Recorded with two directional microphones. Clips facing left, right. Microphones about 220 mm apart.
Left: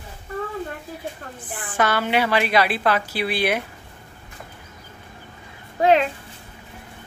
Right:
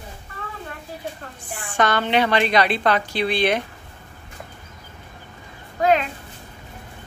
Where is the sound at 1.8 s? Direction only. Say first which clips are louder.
Right 1 dB; 5° left (ahead or behind).